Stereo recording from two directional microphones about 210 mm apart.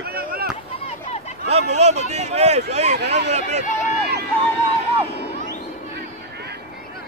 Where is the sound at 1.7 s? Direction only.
30° right (ahead or behind).